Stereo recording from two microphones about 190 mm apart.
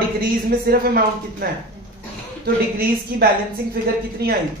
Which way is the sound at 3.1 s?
55° right (ahead or behind).